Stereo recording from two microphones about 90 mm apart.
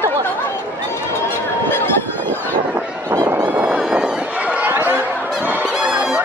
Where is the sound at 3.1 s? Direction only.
35° right (ahead or behind).